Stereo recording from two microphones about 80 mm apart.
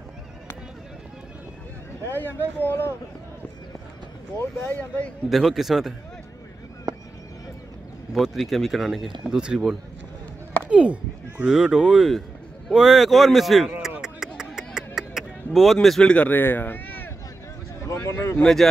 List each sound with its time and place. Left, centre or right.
2.0 s speech: left
4.4 s speech: left
5.3 s speech: centre
8.1 s speech: centre
10.7 s speech: centre
13.7 s a sound: centre
16.1 s speech: centre
17.8 s speech: left
18.4 s speech: centre